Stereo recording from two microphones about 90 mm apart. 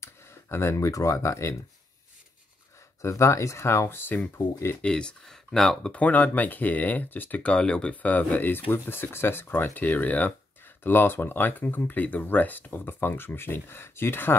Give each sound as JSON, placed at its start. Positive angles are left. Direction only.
{"t": 0.0, "sound": "speech", "side_deg": 30}
{"t": 3.0, "sound": "speech", "side_deg": 35}
{"t": 4.8, "sound": "speech", "side_deg": 10}
{"t": 5.9, "sound": "speech", "side_deg": 20}